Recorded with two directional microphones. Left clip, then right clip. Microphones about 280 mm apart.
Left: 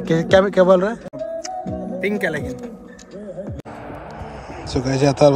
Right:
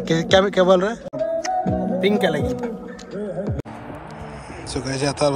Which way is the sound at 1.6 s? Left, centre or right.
Right.